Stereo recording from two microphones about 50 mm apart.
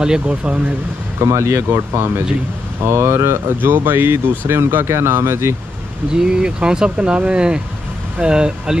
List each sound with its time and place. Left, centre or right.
0.0 s speech: centre
1.3 s speech: right
2.9 s speech: right
6.1 s speech: centre